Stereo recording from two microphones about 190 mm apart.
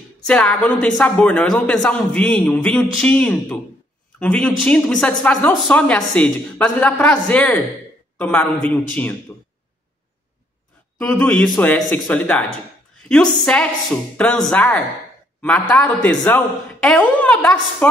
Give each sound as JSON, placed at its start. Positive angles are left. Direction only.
{"t": 0.3, "sound": "speech", "side_deg": 5}
{"t": 11.0, "sound": "speech", "side_deg": 10}